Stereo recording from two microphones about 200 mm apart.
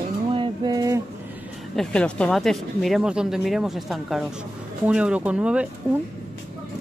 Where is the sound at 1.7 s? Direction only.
5° left (ahead or behind).